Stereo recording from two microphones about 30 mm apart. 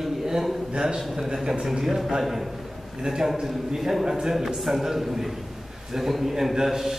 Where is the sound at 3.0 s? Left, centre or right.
Centre.